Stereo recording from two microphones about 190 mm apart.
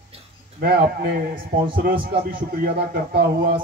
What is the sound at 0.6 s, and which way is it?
A man's voice, 55° right (ahead or behind).